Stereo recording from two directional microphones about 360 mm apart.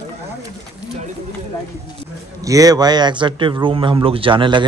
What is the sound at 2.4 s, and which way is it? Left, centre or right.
A man's voice, centre.